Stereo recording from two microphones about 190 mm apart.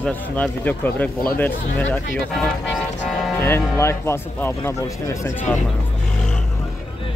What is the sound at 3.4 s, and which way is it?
Speech, 15° left (ahead or behind).